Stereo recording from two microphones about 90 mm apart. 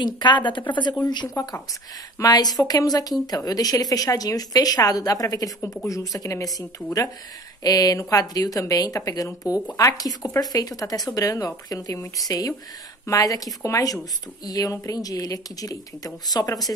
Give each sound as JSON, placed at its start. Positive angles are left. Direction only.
{"t": 0.0, "sound": "speech", "side_deg": 55}
{"t": 0.9, "sound": "a woman's voice", "side_deg": 45}